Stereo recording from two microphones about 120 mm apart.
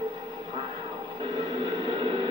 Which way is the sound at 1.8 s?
45° right (ahead or behind).